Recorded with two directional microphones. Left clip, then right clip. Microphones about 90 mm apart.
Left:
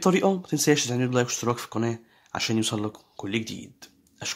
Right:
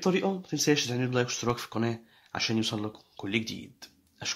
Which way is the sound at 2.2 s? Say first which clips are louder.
Left 3 dB; 35° left (ahead or behind).